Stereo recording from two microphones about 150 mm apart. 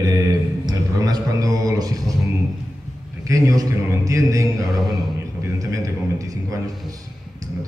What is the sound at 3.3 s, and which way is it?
A man's voice, 25° right (ahead or behind).